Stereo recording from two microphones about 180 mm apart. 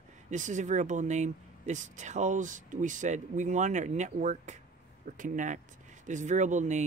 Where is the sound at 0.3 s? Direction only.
45° right (ahead or behind).